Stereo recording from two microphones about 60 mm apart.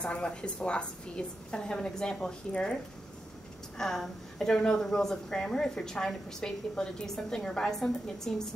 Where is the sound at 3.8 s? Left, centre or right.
Centre.